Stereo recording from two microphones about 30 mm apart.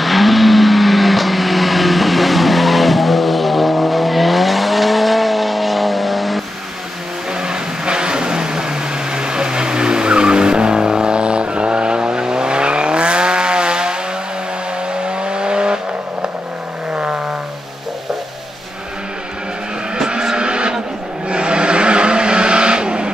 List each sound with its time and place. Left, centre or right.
0.0 s vehicle: centre
7.3 s vehicle: right
15.0 s vehicle: right
16.9 s vehicle: right
20.1 s vehicle: right